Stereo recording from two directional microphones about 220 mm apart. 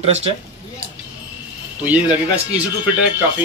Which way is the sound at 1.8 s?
5° right (ahead or behind).